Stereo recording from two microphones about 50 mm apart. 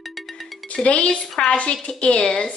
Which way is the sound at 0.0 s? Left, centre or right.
Centre.